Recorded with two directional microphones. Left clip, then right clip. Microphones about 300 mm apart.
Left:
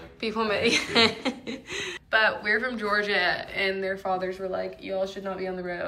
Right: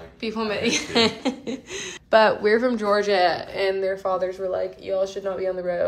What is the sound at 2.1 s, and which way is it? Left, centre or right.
A woman's voice, right.